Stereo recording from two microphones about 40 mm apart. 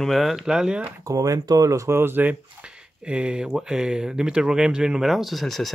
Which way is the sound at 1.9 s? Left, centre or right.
Right.